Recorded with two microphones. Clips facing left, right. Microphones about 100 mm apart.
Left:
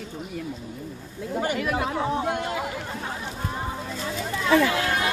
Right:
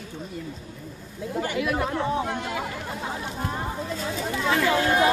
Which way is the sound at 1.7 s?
10° left (ahead or behind).